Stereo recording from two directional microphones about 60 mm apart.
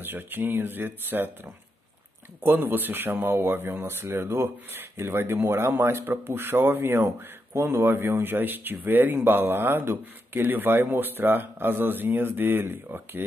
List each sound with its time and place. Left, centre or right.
0.0 s speech: right